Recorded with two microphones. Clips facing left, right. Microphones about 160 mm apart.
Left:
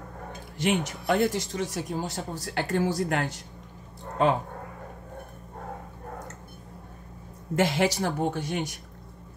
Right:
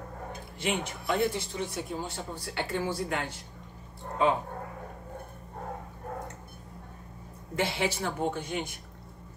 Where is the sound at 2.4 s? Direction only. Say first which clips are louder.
Left 5 dB; 45° left (ahead or behind).